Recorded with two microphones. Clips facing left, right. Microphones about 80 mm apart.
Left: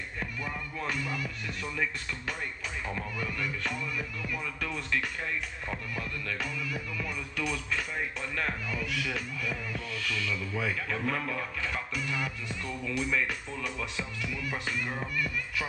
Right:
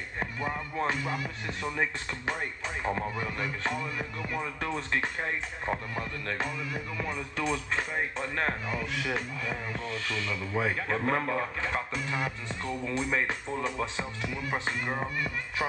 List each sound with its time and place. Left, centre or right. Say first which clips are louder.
0.2 s speech: right 4 dB; right
2.8 s music: right 5 dB; right